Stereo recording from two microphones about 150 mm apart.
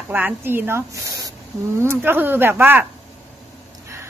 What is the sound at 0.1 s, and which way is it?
A woman's voice, 15° right (ahead or behind).